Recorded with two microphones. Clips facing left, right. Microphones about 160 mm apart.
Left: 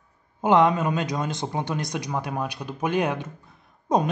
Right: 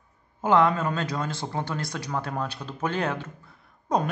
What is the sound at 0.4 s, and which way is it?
A woman's voice, 20° left (ahead or behind).